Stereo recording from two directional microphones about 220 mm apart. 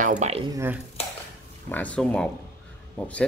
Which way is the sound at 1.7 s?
5° left (ahead or behind).